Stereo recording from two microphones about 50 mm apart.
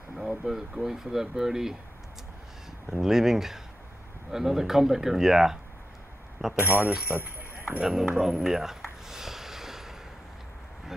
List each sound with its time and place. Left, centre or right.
0.1 s speech: centre
2.9 s speech: centre
6.6 s speech: right
7.8 s speech: centre
9.1 s a sound: centre